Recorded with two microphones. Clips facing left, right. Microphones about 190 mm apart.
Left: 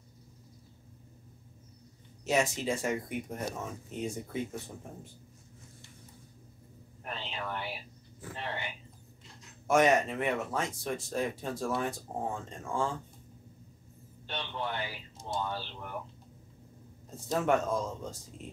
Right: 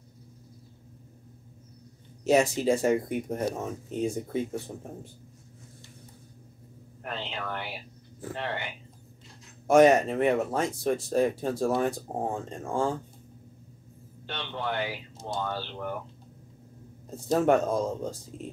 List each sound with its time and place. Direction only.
2.2 s speech: 35° right (ahead or behind)
7.0 s a sound: 75° right (ahead or behind)
9.7 s speech: 35° right (ahead or behind)
14.2 s speech: 75° right (ahead or behind)
17.3 s speech: 35° right (ahead or behind)